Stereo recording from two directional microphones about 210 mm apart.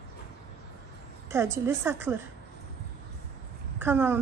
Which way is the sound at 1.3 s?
10° right (ahead or behind).